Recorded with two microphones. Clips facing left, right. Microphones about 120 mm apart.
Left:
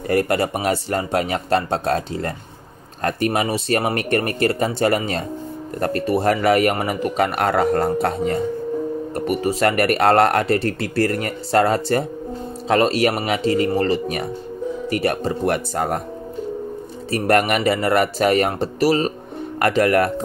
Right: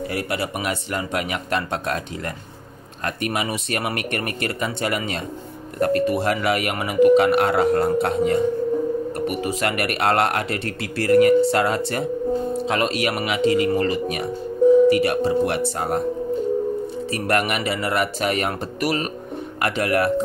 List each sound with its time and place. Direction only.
0.1 s speech: 45° left (ahead or behind)
17.1 s speech: 40° left (ahead or behind)
19.6 s speech: 40° left (ahead or behind)